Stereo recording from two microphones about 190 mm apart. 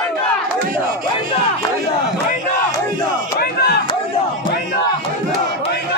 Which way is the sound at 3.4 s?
60° left (ahead or behind).